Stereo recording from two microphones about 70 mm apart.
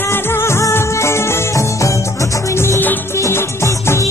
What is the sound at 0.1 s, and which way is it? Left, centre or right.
Music, left.